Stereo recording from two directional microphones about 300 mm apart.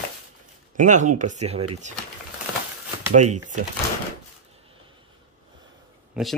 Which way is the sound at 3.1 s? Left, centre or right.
Right.